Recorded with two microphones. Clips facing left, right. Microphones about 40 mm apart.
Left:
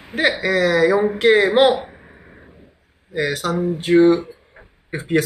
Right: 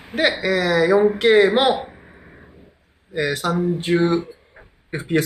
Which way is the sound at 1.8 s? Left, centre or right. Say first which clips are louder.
Even; centre.